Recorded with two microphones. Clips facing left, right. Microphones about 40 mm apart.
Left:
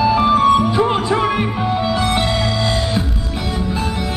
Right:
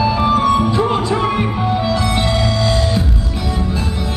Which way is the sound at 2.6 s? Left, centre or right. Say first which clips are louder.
Right 2 dB; centre.